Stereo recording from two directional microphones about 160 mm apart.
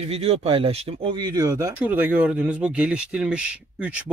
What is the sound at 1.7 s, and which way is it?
Speech, 10° right (ahead or behind).